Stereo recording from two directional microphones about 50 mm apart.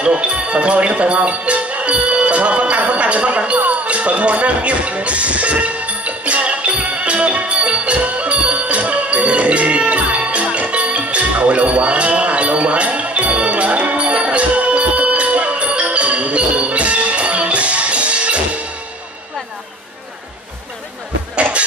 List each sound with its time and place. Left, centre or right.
0.0 s speech: right
3.6 s music: right
21.4 s a sound: right